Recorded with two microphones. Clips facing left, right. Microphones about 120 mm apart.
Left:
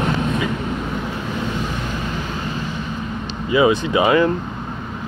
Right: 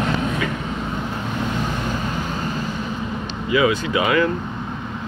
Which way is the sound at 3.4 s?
30° left (ahead or behind).